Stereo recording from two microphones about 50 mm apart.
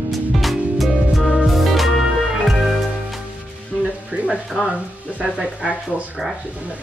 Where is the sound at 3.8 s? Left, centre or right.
Right.